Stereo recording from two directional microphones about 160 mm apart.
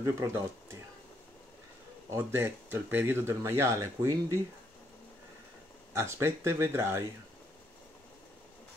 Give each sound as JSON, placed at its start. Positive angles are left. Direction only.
{"t": 0.0, "sound": "speech", "side_deg": -15}
{"t": 2.0, "sound": "speech", "side_deg": -15}
{"t": 5.9, "sound": "speech", "side_deg": -15}